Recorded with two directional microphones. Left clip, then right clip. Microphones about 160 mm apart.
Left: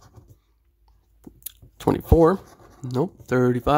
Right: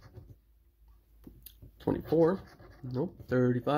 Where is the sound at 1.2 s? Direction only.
30° left (ahead or behind).